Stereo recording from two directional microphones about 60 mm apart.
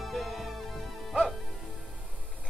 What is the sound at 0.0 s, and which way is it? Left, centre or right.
Music, centre.